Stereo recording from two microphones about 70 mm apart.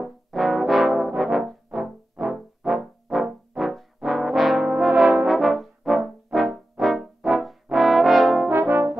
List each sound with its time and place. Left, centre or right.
0.0 s brass instrument: centre
8.5 s brass instrument: right